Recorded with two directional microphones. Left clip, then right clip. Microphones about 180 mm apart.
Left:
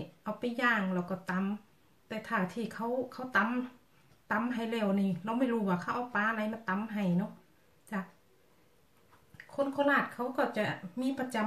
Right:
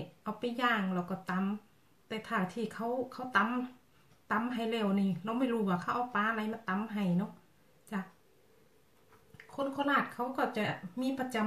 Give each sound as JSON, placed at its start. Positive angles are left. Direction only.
{"t": 0.2, "sound": "speech", "side_deg": 0}
{"t": 9.6, "sound": "speech", "side_deg": 0}